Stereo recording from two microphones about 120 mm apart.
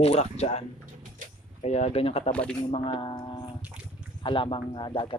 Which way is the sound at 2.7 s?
45° left (ahead or behind).